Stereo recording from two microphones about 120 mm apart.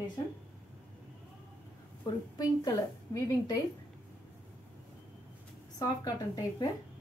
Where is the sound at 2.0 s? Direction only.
35° left (ahead or behind).